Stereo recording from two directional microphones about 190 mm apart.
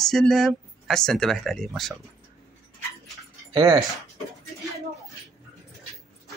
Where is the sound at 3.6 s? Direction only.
20° right (ahead or behind).